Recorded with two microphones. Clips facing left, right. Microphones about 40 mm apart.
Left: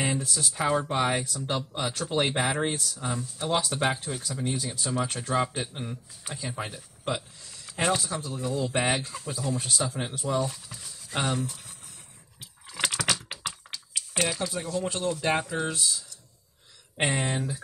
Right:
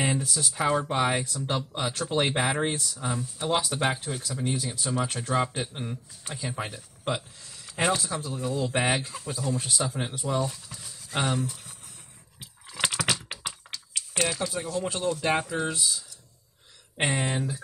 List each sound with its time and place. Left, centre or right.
0.0 s speech: centre
12.4 s typing: centre
16.9 s speech: centre